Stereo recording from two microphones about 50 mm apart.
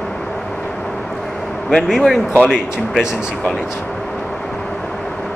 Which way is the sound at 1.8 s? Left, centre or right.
Centre.